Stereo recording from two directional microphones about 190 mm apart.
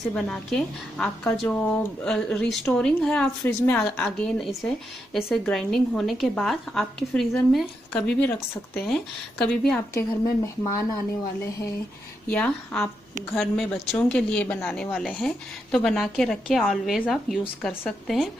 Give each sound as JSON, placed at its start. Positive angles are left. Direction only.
{"t": 0.1, "sound": "a woman's voice", "side_deg": 5}
{"t": 9.9, "sound": "speech", "side_deg": 20}
{"t": 12.3, "sound": "a woman's voice", "side_deg": 10}